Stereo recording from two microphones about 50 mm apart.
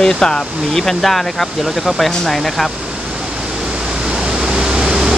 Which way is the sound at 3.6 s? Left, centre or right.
Centre.